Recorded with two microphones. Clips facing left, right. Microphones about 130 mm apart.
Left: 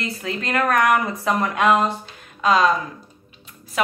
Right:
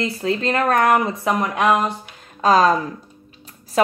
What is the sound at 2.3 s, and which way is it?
Speech, 35° right (ahead or behind).